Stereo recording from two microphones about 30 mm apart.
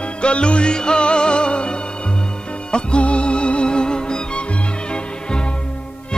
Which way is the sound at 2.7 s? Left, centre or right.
Left.